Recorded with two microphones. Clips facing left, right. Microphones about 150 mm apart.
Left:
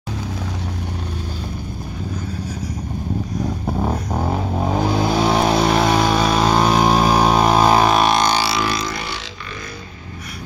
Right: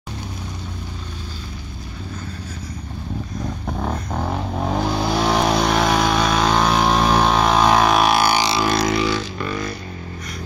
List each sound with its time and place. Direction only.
3.3 s vehicle: 10° left (ahead or behind); by 8.5 s 10° right (ahead or behind)
8.7 s vehicle: 90° right